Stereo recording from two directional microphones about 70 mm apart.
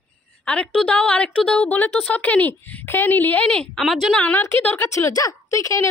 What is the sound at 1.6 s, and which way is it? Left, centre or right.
A woman's voice, left.